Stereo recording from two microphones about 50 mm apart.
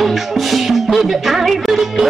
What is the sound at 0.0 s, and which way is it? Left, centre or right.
Music, centre.